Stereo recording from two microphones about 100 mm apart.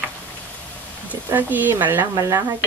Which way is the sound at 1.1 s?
15° right (ahead or behind).